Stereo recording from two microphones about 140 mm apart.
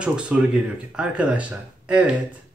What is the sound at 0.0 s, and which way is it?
Speech, 10° right (ahead or behind).